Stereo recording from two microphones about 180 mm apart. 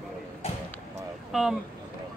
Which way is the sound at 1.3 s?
Centre (ahead or behind).